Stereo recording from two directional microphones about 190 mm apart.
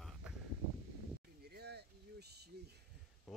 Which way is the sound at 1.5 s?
60° right (ahead or behind).